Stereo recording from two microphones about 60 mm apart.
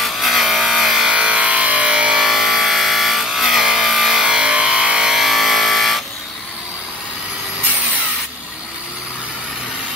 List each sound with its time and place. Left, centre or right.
0.0 s wood: centre
1.1 s a sound: right
2.2 s wood: centre
4.2 s music: centre